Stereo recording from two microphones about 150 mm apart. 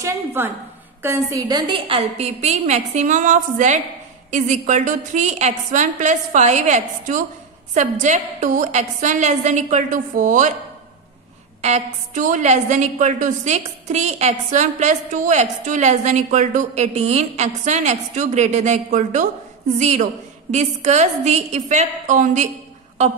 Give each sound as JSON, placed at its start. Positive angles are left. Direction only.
{"t": 0.0, "sound": "a woman's voice", "side_deg": -15}
{"t": 1.7, "sound": "a woman's voice", "side_deg": -35}
{"t": 11.6, "sound": "a woman's voice", "side_deg": -50}